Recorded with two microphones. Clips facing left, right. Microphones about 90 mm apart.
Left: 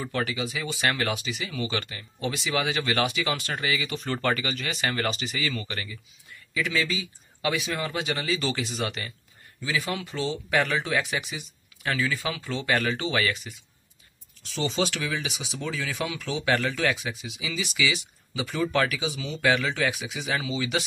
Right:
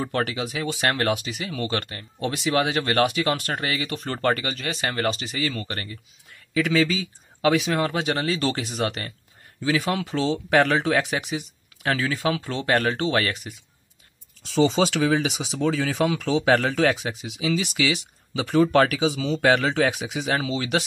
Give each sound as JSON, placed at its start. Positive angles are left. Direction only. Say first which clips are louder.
{"t": 0.0, "sound": "speech", "louder": "right 3 dB", "side_deg": -55}
{"t": 6.5, "sound": "speech", "louder": "right 6 dB", "side_deg": -70}
{"t": 9.6, "sound": "speech", "louder": "right 6 dB", "side_deg": -70}
{"t": 10.1, "sound": "speech", "louder": "right 6 dB", "side_deg": -85}
{"t": 14.4, "sound": "speech", "louder": "right 7 dB", "side_deg": -80}
{"t": 18.4, "sound": "speech", "louder": "right 7 dB", "side_deg": -60}